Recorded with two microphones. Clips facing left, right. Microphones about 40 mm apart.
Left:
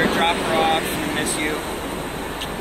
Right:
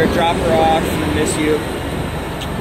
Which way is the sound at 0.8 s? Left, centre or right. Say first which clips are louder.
Right 6 dB; right.